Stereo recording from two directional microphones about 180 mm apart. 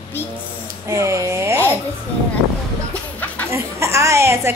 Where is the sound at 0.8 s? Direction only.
15° right (ahead or behind).